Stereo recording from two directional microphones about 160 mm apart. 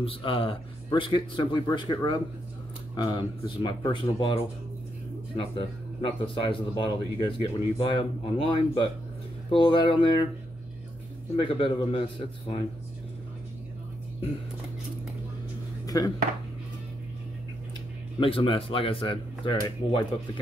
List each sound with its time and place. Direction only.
0.0 s speech: 35° left (ahead or behind)
11.3 s speech: 35° left (ahead or behind)
15.9 s speech: 20° left (ahead or behind)
18.2 s speech: 35° left (ahead or behind)